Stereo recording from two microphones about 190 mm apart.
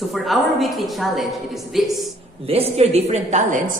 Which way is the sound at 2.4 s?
30° right (ahead or behind).